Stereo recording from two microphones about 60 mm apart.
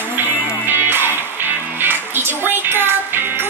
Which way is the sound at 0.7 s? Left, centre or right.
Right.